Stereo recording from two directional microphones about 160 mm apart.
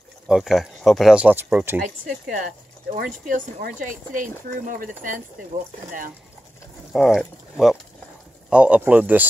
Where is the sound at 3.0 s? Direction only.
60° right (ahead or behind).